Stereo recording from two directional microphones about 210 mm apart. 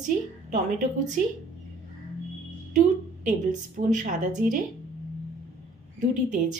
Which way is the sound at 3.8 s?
35° right (ahead or behind).